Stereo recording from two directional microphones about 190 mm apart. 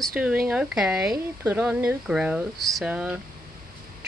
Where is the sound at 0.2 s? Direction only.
5° right (ahead or behind).